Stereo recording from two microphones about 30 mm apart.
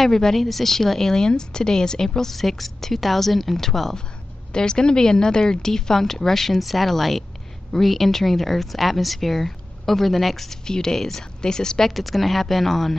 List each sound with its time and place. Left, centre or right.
0.0 s a woman's voice: centre
4.5 s a woman's voice: left
6.6 s speech: centre
10.6 s a woman's voice: left
11.9 s speech: centre